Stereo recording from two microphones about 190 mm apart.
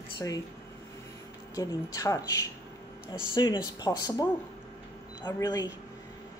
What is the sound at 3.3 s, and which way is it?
Speech, 25° left (ahead or behind).